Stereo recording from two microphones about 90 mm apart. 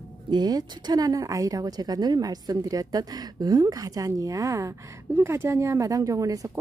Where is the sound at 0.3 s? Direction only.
45° right (ahead or behind).